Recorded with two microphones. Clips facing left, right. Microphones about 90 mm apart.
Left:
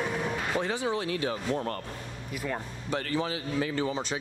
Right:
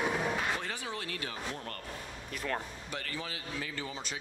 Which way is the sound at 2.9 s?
35° left (ahead or behind).